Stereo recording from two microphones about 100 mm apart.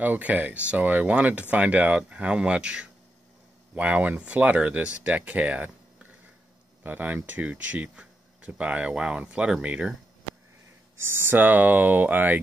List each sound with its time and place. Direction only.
0.0 s speech: 15° right (ahead or behind)
6.8 s speech: 20° right (ahead or behind)
11.0 s speech: 25° right (ahead or behind)